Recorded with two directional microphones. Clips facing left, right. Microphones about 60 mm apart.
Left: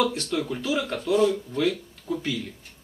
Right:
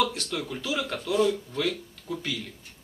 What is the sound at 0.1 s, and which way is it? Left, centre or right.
A man's voice, left.